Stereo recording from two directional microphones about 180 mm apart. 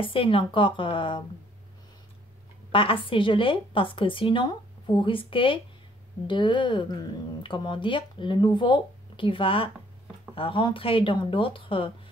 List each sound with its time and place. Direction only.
0.0 s speech: 30° left (ahead or behind)
2.7 s speech: 30° left (ahead or behind)